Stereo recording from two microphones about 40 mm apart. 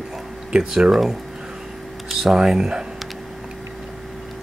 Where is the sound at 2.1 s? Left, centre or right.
Centre.